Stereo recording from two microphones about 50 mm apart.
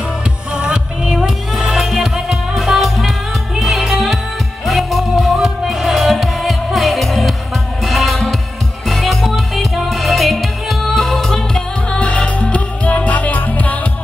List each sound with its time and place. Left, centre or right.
0.6 s music: centre
1.1 s music: centre
12.0 s music: left